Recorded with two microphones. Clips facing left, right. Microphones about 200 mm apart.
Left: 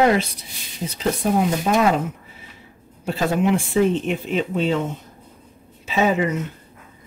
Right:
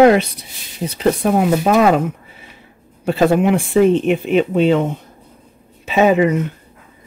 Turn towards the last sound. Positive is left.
turn(degrees=-60)  # may be behind; listen again after turning